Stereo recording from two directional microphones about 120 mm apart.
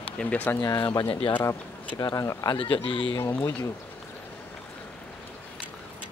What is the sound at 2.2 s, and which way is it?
Speech, 30° left (ahead or behind).